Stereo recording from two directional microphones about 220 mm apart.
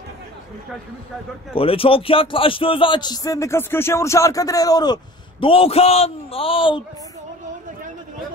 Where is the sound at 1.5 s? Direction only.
25° left (ahead or behind).